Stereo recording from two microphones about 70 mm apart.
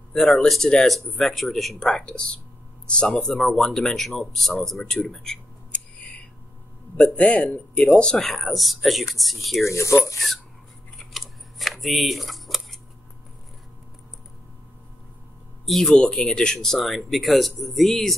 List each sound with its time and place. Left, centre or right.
0.1 s speech: centre
7.0 s speech: centre
8.4 s speech: centre
9.7 s mechanisms: left
11.0 s scissors: centre
15.6 s speech: centre